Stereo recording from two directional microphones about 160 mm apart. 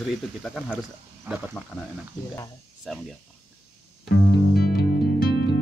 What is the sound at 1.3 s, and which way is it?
Speech, 10° right (ahead or behind).